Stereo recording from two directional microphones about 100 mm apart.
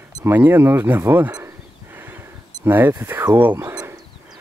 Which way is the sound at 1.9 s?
20° right (ahead or behind).